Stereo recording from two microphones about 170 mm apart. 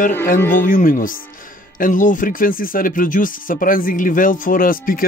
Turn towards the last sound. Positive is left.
turn(degrees=55)  # may be behind; listen again after turning